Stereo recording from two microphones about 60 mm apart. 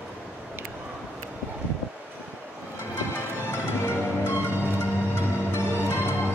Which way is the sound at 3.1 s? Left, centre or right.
Left.